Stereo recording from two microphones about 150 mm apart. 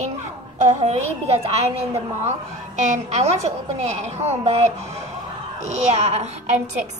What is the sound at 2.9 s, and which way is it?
A woman's voice, 50° right (ahead or behind).